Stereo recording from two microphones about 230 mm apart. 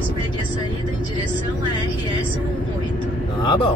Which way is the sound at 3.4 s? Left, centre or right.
Centre.